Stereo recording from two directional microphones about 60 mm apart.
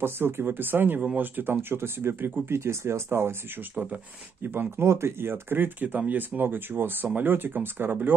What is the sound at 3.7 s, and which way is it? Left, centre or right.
Speech, right.